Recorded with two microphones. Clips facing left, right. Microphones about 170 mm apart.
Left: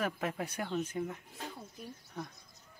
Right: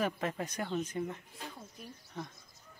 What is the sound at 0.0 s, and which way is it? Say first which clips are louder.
A man's voice: right 1 dB; 5° left (ahead or behind).